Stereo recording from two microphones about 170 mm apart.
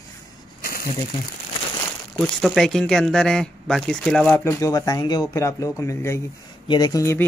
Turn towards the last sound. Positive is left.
turn(degrees=15)  # may be behind; listen again after turning